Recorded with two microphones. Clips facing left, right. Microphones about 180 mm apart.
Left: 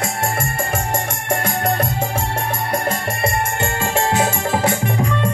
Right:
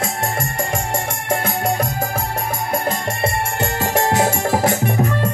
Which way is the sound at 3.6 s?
40° right (ahead or behind).